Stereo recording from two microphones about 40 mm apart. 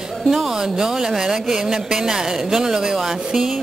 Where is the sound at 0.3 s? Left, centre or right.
Centre.